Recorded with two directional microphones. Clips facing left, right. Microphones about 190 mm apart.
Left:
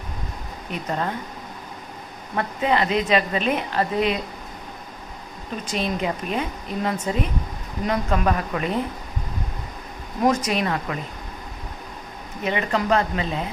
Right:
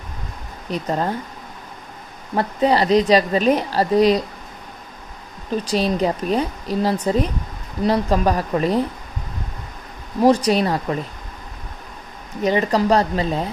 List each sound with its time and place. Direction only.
0.7 s a woman's voice: 35° right (ahead or behind)
2.3 s a woman's voice: 35° right (ahead or behind)
5.7 s a woman's voice: 35° right (ahead or behind)
10.2 s a woman's voice: 35° right (ahead or behind)
12.4 s a woman's voice: 35° right (ahead or behind)